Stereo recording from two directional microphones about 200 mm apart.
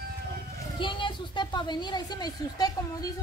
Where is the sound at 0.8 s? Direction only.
25° left (ahead or behind).